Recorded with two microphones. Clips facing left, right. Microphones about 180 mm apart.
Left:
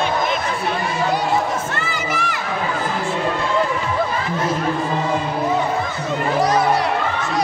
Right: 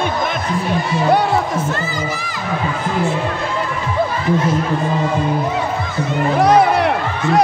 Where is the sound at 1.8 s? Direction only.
70° left (ahead or behind).